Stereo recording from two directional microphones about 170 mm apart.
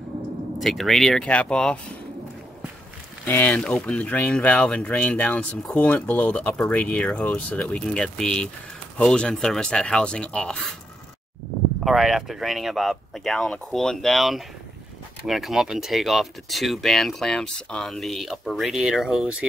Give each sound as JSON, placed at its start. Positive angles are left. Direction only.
{"t": 0.6, "sound": "speech", "side_deg": 0}
{"t": 3.3, "sound": "speech", "side_deg": 10}
{"t": 11.8, "sound": "speech", "side_deg": 0}